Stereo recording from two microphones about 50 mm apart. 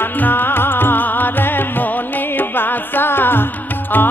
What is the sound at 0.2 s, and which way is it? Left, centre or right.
Music, left.